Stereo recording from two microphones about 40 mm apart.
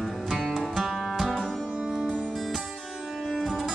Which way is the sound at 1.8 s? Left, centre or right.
Centre.